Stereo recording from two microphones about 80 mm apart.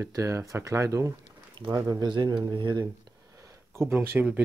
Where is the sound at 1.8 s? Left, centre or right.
Right.